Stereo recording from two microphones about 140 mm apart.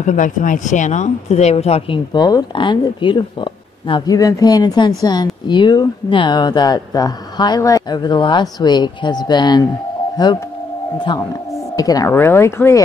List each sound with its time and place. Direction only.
0.0 s speech: 60° left (ahead or behind)
2.1 s speech: 30° left (ahead or behind)